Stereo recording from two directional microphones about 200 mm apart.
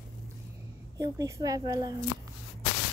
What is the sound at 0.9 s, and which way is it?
A woman's voice, 15° right (ahead or behind).